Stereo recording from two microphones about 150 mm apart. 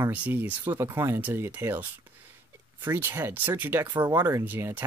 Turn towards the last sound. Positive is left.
turn(degrees=-10)  # may be behind; listen again after turning